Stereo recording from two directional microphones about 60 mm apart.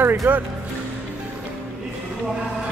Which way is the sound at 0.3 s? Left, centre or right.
Right.